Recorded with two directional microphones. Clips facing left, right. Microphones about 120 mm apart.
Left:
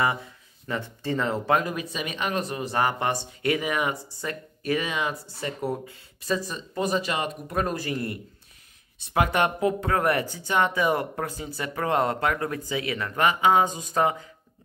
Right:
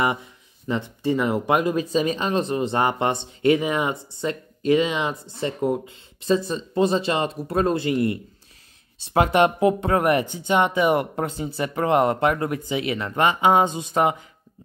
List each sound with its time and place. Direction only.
0.7 s speech: 15° right (ahead or behind)
1.8 s speech: 30° right (ahead or behind)